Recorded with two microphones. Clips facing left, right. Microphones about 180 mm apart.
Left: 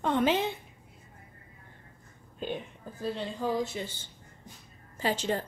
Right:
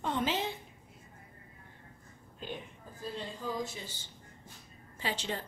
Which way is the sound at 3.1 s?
70° left (ahead or behind).